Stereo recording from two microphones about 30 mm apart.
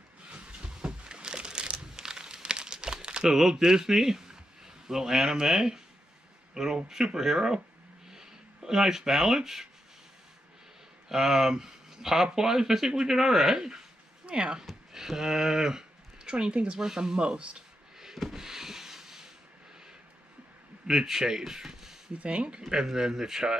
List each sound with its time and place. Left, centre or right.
0.3 s a sound: right
2.0 s crumpling: right
3.3 s speech: centre
8.1 s a sound: centre
11.1 s speech: centre
14.2 s speech: right
14.9 s a sound: centre
16.3 s speech: right
17.2 s speech: right
17.9 s a sound: centre
18.3 s rub: centre
20.8 s speech: centre
22.2 s speech: right
22.7 s speech: right